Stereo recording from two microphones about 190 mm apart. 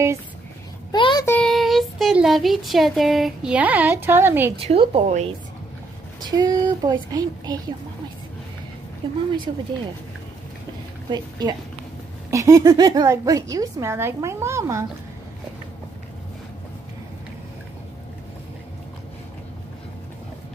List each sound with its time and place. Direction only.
0.9 s a child's voice: 25° left (ahead or behind)
1.2 s speech: 5° left (ahead or behind); by 4.6 s 10° right (ahead or behind)
4.6 s a woman's voice: 30° right (ahead or behind)
6.2 s speech: 20° right (ahead or behind)
9.5 s speech: 25° right (ahead or behind)
11.1 s a woman's voice: 20° right (ahead or behind)